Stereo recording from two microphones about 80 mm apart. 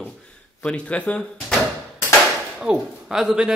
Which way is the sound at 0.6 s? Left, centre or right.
Centre.